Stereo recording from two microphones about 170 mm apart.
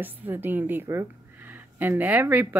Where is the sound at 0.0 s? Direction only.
10° right (ahead or behind).